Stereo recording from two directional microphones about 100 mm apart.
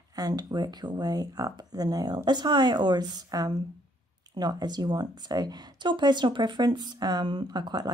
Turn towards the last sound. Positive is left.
turn(degrees=-45)  # may be behind; listen again after turning